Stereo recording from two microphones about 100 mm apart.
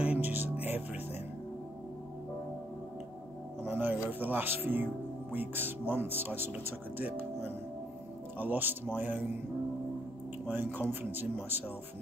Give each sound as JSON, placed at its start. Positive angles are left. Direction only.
{"t": 0.0, "sound": "music", "side_deg": -15}
{"t": 3.6, "sound": "music", "side_deg": -20}
{"t": 4.1, "sound": "a man's voice", "side_deg": -20}
{"t": 8.4, "sound": "a man's voice", "side_deg": -20}
{"t": 10.5, "sound": "a man's voice", "side_deg": -20}